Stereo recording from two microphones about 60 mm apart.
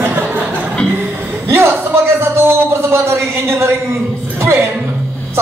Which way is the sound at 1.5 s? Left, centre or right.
Right.